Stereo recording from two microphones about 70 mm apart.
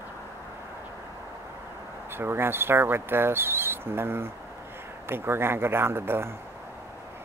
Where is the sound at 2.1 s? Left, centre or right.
Right.